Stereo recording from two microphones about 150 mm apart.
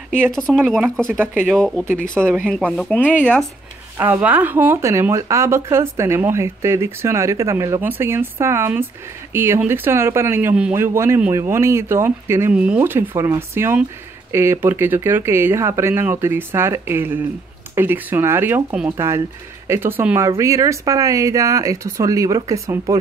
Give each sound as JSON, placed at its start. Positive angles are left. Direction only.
{"t": 0.3, "sound": "speech", "side_deg": 5}
{"t": 1.1, "sound": "speech", "side_deg": -15}
{"t": 1.5, "sound": "speech", "side_deg": 5}
{"t": 2.1, "sound": "speech", "side_deg": -15}
{"t": 2.5, "sound": "speech", "side_deg": 0}
{"t": 4.0, "sound": "speech", "side_deg": -10}